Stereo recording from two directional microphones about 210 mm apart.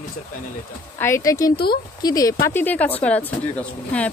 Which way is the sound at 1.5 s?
50° left (ahead or behind).